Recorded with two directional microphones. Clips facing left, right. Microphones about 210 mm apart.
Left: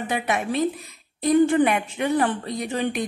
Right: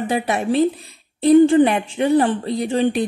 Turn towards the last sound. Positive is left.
turn(degrees=-30)  # may be behind; listen again after turning